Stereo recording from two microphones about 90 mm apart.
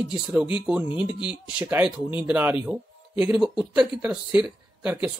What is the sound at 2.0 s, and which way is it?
Speech, 20° right (ahead or behind).